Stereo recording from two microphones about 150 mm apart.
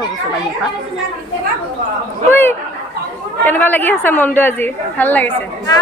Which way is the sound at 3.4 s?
10° left (ahead or behind).